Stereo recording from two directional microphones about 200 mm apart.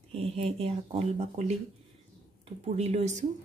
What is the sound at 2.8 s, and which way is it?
Speech, 35° right (ahead or behind).